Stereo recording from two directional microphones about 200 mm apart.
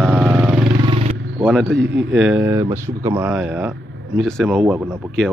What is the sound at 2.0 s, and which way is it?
Speech, 5° right (ahead or behind).